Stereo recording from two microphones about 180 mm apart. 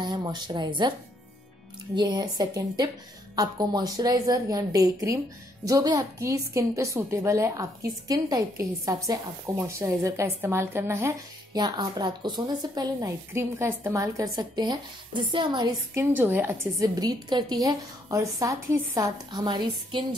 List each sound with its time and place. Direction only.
0.0 s a woman's voice: 25° right (ahead or behind)
2.0 s a woman's voice: 25° right (ahead or behind)